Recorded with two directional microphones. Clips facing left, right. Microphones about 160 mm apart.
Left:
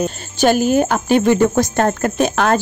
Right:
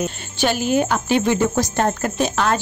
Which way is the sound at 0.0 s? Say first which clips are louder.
Left 6 dB; 45° left (ahead or behind).